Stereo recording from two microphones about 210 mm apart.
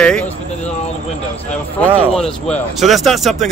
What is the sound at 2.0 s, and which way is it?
Speech, 5° left (ahead or behind).